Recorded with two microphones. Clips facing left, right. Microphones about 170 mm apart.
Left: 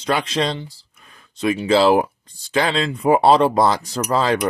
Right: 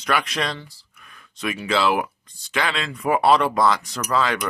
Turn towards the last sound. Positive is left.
turn(degrees=35)  # may be behind; listen again after turning